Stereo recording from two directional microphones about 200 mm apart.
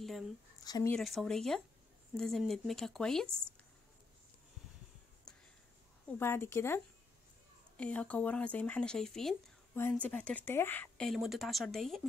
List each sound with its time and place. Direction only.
0.0 s a sound: centre (ahead or behind)
0.7 s speech: 20° left (ahead or behind)
0.9 s speech: centre (ahead or behind)
6.1 s speech: 10° left (ahead or behind)